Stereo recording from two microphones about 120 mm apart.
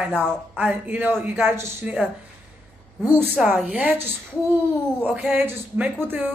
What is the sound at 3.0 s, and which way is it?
Speech, 15° right (ahead or behind).